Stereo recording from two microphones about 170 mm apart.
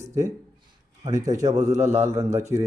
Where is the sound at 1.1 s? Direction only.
20° right (ahead or behind).